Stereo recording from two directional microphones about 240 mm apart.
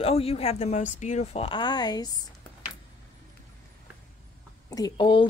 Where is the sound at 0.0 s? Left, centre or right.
Left.